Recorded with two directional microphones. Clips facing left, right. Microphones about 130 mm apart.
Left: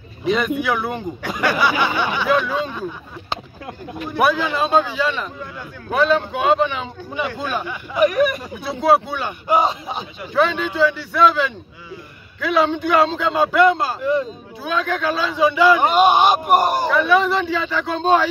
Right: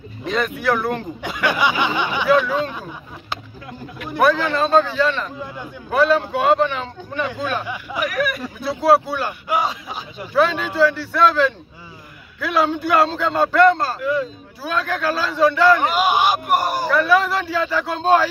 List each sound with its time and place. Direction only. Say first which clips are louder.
0.2 s a man's voice: left 3 dB; 5° left (ahead or behind)
1.4 s a sound: left 1 dB; 15° right (ahead or behind)
2.2 s a man's voice: right 4 dB; centre (ahead or behind)
4.2 s a man's voice: right 1 dB; 10° left (ahead or behind)
7.6 s a sound: even; 10° right (ahead or behind)
8.1 s speech: left 4 dB; 20° left (ahead or behind)
8.6 s a man's voice: right 1 dB; centre (ahead or behind)
9.5 s speech: left 6 dB; 25° left (ahead or behind)
10.3 s a man's voice: right 1 dB; 5° right (ahead or behind)
15.8 s speech: left 4 dB; 25° left (ahead or behind)
16.9 s a man's voice: right 2 dB; 5° right (ahead or behind)